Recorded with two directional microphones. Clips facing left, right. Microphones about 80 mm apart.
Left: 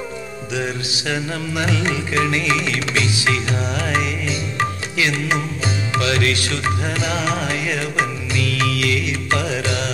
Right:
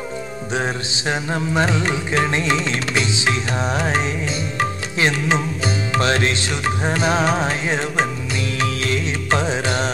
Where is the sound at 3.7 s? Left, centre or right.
Right.